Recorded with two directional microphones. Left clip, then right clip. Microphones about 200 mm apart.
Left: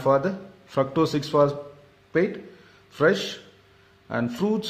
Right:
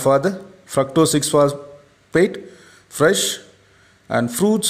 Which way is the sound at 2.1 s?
40° right (ahead or behind).